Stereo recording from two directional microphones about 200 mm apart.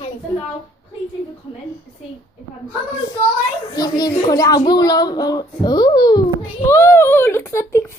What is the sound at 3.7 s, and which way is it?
A child's voice, 20° left (ahead or behind).